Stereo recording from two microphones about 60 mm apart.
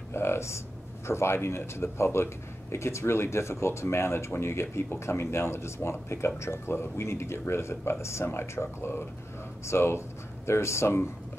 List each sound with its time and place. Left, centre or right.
0.1 s speech: left